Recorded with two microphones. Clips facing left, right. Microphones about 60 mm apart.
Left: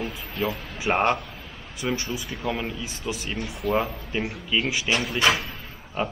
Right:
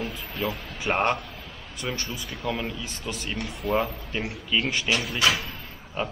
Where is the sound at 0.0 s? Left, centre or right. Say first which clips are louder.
Left 2 dB; centre.